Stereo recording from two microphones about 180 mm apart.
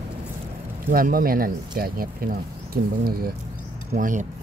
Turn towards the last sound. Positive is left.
turn(degrees=-45)  # may be behind; listen again after turning